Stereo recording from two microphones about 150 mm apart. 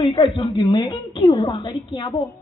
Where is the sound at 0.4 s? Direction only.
30° left (ahead or behind).